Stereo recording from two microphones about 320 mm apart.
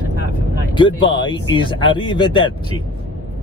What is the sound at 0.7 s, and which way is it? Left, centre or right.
Speech, centre.